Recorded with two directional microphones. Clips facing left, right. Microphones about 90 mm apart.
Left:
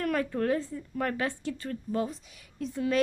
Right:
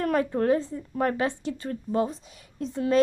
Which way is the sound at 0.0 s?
25° right (ahead or behind).